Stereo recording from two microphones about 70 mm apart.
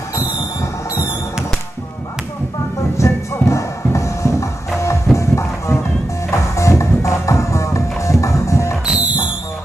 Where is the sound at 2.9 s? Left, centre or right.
Left.